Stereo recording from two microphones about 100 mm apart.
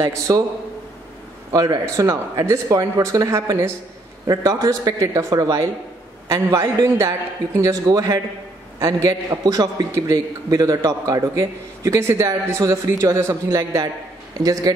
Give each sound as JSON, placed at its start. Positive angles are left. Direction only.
{"t": 0.0, "sound": "a man's voice", "side_deg": -35}
{"t": 1.5, "sound": "a man's voice", "side_deg": -35}